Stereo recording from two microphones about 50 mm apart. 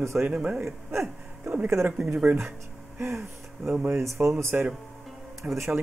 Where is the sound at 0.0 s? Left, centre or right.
Right.